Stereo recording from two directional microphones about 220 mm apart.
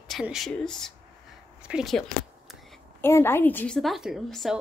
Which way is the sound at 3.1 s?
10° left (ahead or behind).